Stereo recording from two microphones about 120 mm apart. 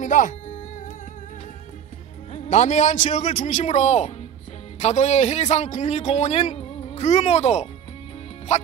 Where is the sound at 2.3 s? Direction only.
75° left (ahead or behind).